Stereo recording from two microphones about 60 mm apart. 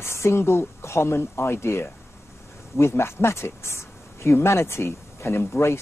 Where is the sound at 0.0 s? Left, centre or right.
Left.